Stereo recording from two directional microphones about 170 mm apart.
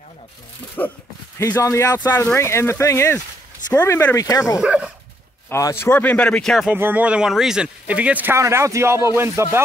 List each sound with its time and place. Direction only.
0.8 s speech: 10° left (ahead or behind)
4.6 s speech: 5° right (ahead or behind)
5.5 s speech: 15° left (ahead or behind)
6.7 s speech: 10° right (ahead or behind)